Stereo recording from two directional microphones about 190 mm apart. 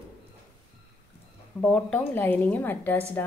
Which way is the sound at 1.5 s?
5° left (ahead or behind).